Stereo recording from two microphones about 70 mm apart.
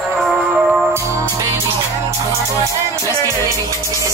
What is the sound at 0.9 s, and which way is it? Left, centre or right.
Music, right.